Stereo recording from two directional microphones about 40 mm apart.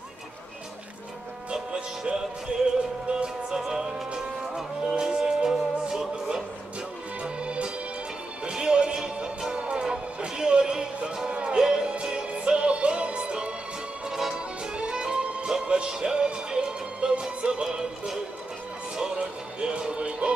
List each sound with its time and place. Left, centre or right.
1.5 s music: right
3.5 s music: centre
7.2 s music: right
14.0 s music: centre
18.9 s music: right